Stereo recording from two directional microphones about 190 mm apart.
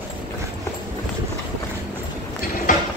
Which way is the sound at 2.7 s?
45° left (ahead or behind).